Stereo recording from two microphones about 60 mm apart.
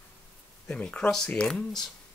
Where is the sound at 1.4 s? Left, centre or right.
Centre.